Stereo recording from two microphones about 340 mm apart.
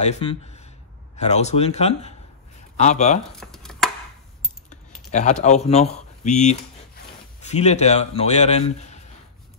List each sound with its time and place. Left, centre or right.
0.0 s speech: centre
3.3 s a sound: centre
4.6 s speech: left